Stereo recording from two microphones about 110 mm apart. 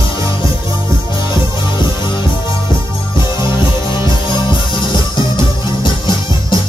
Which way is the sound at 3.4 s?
45° left (ahead or behind).